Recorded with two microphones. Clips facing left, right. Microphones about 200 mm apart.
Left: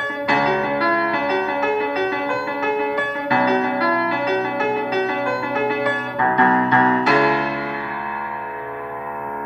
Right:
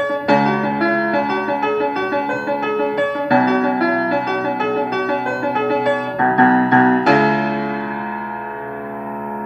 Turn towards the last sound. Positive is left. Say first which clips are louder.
# right 3 dB
turn(degrees=-50)  # may be behind; listen again after turning